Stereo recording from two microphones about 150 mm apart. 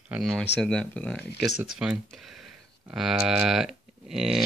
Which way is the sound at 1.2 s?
90° left.